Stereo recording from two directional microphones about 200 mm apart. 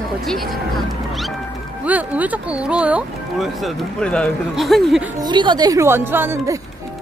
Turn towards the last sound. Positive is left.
turn(degrees=-10)  # may be behind; listen again after turning